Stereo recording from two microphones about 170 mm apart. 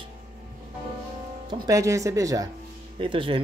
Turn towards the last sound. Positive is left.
turn(degrees=-30)  # may be behind; listen again after turning